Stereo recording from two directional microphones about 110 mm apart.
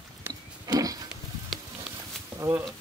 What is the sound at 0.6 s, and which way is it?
Pig, 35° right (ahead or behind).